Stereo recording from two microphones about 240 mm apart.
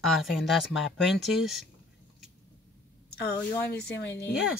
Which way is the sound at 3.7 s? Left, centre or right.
Left.